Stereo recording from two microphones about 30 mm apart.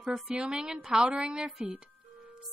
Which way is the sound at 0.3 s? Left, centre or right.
Right.